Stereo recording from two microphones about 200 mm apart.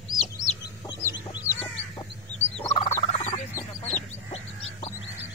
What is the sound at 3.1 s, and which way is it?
Fowl, 35° left (ahead or behind).